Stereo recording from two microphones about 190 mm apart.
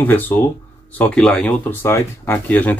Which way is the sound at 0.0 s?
10° left (ahead or behind).